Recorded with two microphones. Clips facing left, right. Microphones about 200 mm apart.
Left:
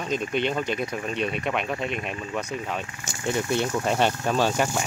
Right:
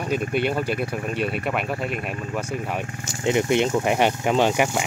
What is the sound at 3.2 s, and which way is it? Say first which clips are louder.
Speech: right 5 dB; 20° right (ahead or behind).